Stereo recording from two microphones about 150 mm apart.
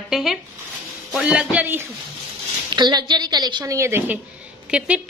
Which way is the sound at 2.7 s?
30° right (ahead or behind).